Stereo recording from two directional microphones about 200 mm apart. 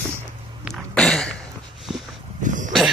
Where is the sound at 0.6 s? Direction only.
Centre (ahead or behind).